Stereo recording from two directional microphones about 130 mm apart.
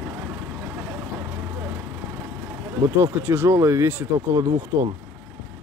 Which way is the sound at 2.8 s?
20° right (ahead or behind).